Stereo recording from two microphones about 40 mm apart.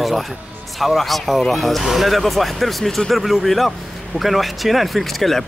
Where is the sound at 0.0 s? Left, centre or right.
Centre.